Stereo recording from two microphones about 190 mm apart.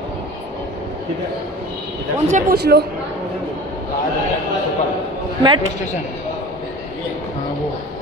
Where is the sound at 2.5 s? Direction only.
55° right (ahead or behind).